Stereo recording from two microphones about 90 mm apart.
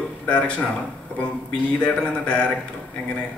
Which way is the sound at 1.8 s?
15° left (ahead or behind).